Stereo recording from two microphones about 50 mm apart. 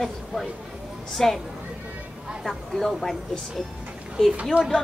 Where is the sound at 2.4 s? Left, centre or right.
Centre.